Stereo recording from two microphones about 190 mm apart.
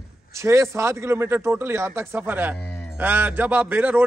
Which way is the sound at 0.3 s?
15° right (ahead or behind).